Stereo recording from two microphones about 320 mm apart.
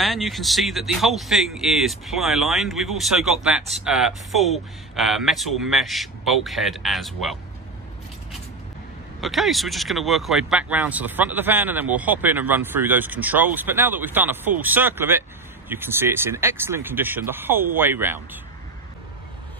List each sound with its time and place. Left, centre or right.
0.0 s speech: centre
9.2 s speech: centre